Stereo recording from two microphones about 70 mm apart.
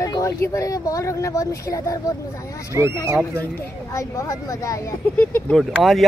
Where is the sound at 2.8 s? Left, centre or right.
Right.